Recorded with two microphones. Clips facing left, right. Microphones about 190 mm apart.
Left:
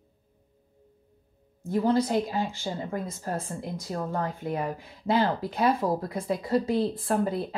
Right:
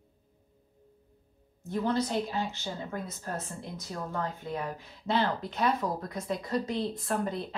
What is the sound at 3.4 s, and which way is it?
Speech, 35° left (ahead or behind).